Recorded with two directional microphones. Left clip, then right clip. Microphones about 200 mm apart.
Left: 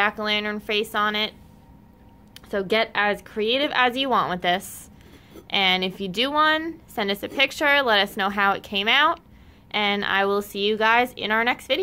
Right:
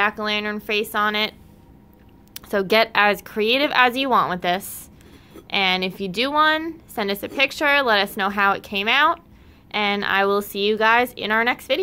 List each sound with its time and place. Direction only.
0.0 s a woman's voice: 5° right (ahead or behind)
2.3 s a woman's voice: 20° right (ahead or behind)